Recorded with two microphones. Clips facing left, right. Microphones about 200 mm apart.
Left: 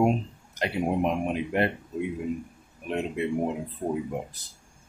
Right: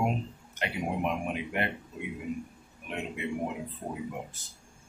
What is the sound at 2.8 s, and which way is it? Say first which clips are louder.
Speech: left 7 dB; 35° left (ahead or behind).